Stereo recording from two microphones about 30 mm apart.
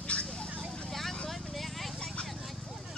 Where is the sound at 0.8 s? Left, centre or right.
Centre.